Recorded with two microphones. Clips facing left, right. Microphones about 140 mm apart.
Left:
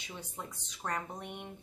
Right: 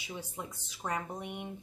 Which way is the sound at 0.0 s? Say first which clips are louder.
Right 3 dB; 10° right (ahead or behind).